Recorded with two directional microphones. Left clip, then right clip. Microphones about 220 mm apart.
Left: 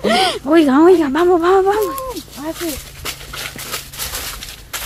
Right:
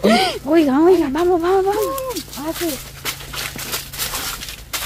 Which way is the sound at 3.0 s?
5° right (ahead or behind).